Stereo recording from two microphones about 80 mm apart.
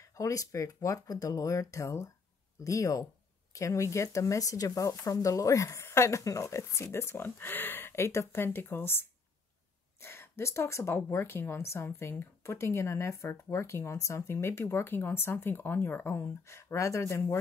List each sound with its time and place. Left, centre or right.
0.2 s a woman's voice: left
10.0 s a woman's voice: left
16.4 s a woman's voice: left